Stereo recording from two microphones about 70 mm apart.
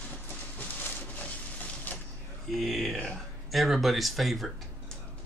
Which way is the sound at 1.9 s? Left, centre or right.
Left.